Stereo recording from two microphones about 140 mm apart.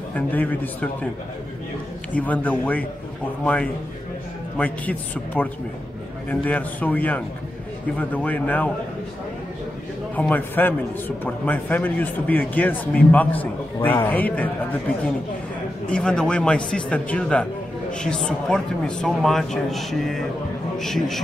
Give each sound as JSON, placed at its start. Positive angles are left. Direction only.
{"t": 0.1, "sound": "a man's voice", "side_deg": 10}
{"t": 2.1, "sound": "a man's voice", "side_deg": 10}
{"t": 4.6, "sound": "a man's voice", "side_deg": 10}
{"t": 10.1, "sound": "a man's voice", "side_deg": 10}
{"t": 15.9, "sound": "a man's voice", "side_deg": 5}